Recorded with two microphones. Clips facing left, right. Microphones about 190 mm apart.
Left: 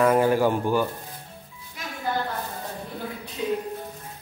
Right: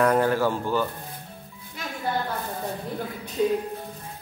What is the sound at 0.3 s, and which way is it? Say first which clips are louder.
Speech: left 2 dB; 15° left (ahead or behind).